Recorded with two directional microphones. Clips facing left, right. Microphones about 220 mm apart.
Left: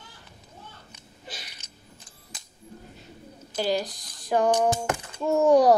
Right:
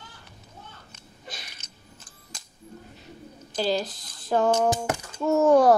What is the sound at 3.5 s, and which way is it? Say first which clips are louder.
A child's voice: even; 15° left (ahead or behind).